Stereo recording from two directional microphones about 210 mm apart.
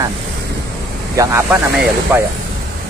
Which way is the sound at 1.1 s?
15° right (ahead or behind).